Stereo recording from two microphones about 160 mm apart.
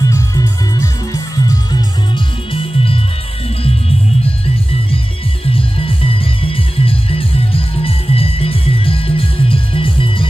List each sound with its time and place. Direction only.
0.1 s music: 20° left (ahead or behind); by 3.0 s 35° left (ahead or behind)
5.5 s music: 35° left (ahead or behind)